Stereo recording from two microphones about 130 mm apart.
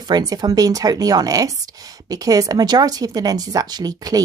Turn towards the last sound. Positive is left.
turn(degrees=-30)  # may be behind; listen again after turning